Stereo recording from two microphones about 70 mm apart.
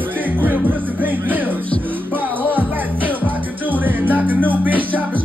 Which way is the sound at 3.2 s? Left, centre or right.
Right.